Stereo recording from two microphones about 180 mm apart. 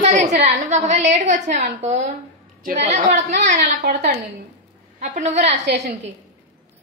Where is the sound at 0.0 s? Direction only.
40° right (ahead or behind).